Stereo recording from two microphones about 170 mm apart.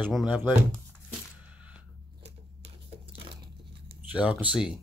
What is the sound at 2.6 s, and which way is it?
Tearing, 35° right (ahead or behind).